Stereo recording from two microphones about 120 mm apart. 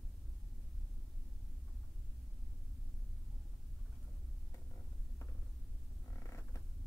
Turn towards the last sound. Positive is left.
turn(degrees=25)  # may be behind; listen again after turning